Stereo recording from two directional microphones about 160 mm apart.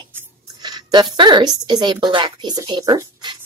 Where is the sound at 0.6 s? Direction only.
25° right (ahead or behind).